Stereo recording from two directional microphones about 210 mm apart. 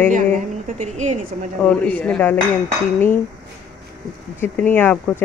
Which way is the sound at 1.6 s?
10° left (ahead or behind).